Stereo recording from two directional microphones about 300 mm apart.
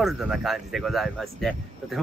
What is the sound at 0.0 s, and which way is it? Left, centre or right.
Speech, centre.